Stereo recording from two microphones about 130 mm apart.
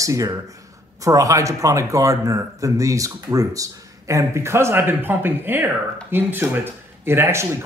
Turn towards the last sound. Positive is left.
turn(degrees=-20)  # may be behind; listen again after turning